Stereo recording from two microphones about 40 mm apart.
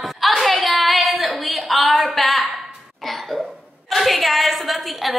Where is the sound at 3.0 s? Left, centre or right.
Centre.